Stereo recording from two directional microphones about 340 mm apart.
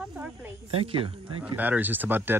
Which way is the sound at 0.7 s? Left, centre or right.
Centre.